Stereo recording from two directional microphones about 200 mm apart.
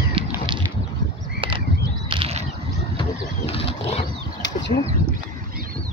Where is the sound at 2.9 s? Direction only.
30° left (ahead or behind).